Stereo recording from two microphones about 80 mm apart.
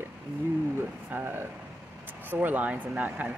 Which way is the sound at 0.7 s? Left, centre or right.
Right.